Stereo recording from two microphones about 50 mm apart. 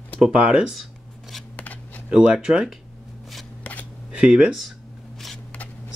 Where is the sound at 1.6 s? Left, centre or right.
Left.